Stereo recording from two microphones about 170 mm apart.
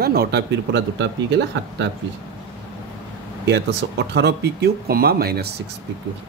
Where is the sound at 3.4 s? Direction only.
90° right; by 5.5 s 65° right (ahead or behind).